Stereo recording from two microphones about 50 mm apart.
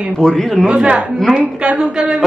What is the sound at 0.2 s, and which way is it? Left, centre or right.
Speech, centre.